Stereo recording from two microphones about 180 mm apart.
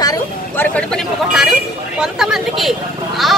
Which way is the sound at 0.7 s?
Centre (ahead or behind).